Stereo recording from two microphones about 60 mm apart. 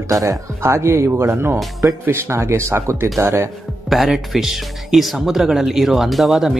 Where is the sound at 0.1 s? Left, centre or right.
Right.